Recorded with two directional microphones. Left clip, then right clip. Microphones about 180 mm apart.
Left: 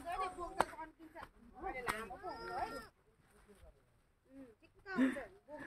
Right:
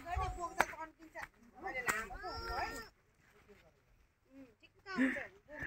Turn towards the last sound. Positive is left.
turn(degrees=0)  # may be behind; listen again after turning